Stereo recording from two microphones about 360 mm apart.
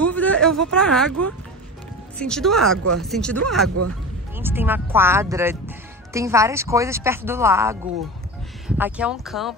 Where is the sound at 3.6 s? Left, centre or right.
Right.